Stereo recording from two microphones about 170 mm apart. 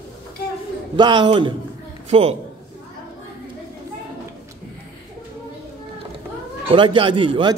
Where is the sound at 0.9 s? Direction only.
25° right (ahead or behind).